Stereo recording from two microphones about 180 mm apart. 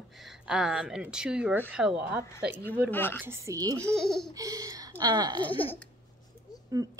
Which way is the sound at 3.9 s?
Centre (ahead or behind).